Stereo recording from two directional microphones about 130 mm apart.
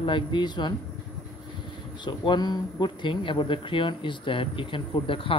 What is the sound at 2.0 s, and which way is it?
Speech, 35° left (ahead or behind).